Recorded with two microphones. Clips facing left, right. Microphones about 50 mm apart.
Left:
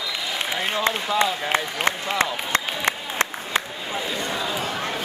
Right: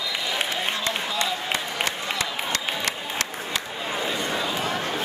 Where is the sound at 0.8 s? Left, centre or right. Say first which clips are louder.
Left 5 dB; left.